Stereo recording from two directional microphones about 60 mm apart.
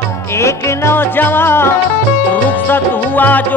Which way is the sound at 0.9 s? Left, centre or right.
Left.